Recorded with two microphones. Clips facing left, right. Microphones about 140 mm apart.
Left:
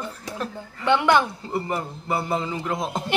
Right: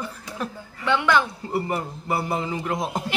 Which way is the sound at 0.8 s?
20° left (ahead or behind).